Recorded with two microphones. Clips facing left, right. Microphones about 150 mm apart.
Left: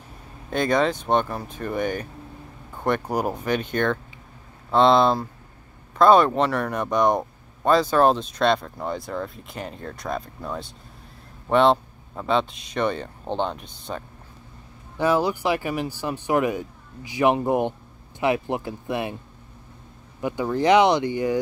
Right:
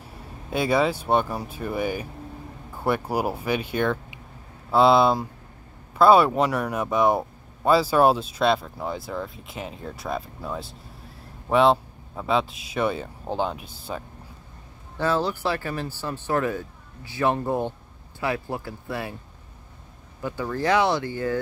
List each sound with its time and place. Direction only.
0.5 s speech: 5° right (ahead or behind)
15.0 s speech: 15° left (ahead or behind)
20.2 s speech: 15° left (ahead or behind)